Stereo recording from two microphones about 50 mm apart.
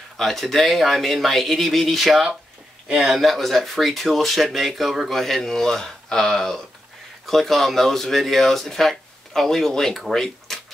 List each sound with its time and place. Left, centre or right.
0.2 s speech: centre